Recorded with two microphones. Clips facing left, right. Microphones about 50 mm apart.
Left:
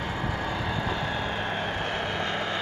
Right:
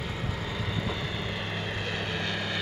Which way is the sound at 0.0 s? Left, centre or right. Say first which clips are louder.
Left 5 dB; left.